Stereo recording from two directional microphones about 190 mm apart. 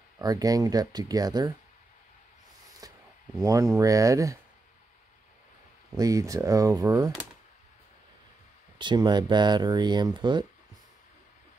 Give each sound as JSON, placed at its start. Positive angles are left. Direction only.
{"t": 0.2, "sound": "speech", "side_deg": -20}
{"t": 2.8, "sound": "a sound", "side_deg": -20}
{"t": 3.3, "sound": "speech", "side_deg": -15}
{"t": 5.9, "sound": "speech", "side_deg": -20}
{"t": 8.7, "sound": "speech", "side_deg": -25}